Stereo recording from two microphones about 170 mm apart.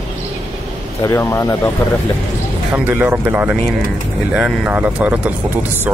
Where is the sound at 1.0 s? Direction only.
15° left (ahead or behind).